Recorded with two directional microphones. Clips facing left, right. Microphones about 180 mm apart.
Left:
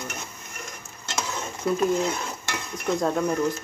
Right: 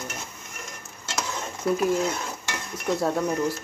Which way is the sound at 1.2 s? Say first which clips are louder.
Left 1 dB; 5° right (ahead or behind).